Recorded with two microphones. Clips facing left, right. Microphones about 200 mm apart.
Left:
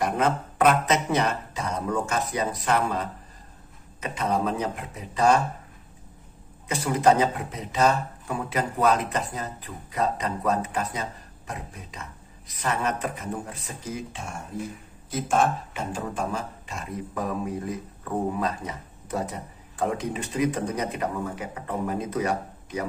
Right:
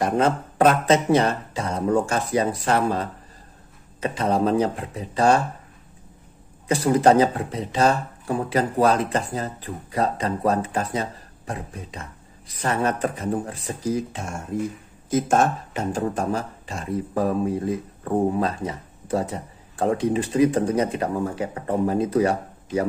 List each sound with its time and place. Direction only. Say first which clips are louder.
0.0 s speech: right 4 dB; 30° right (ahead or behind)
6.7 s speech: right 4 dB; 35° right (ahead or behind)